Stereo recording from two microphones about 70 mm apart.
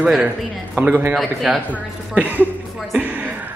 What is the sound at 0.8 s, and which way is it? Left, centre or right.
A man's voice, right.